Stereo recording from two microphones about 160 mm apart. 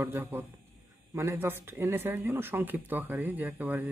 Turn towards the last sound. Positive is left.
turn(degrees=-10)  # may be behind; listen again after turning